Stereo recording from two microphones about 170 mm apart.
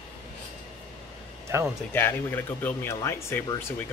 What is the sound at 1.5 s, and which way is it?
Speech, 15° right (ahead or behind).